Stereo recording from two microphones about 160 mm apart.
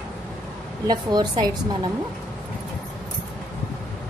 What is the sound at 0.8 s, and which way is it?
Speech, 25° right (ahead or behind).